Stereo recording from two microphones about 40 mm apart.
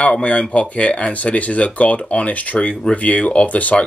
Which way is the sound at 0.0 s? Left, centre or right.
Left.